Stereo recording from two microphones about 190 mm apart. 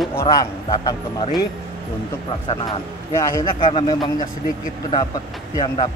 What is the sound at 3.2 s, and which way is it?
A man's voice, 15° left (ahead or behind).